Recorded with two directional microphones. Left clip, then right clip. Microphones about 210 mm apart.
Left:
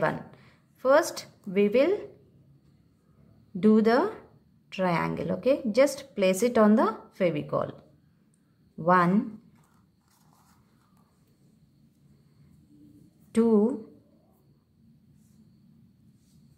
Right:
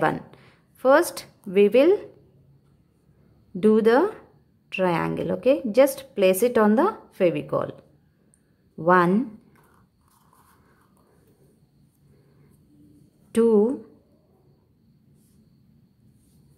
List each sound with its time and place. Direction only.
0.0 s speech: 25° right (ahead or behind)
3.5 s a woman's voice: 20° right (ahead or behind)
8.7 s a woman's voice: 25° right (ahead or behind)
13.3 s a woman's voice: 20° right (ahead or behind)